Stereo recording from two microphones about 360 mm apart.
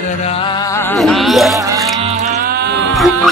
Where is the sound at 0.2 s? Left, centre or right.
Centre.